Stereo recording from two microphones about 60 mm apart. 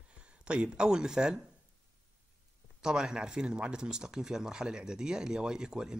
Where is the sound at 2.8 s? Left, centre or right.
Centre.